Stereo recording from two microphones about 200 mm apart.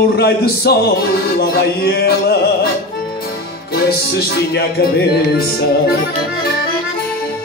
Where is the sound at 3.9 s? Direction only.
50° left (ahead or behind).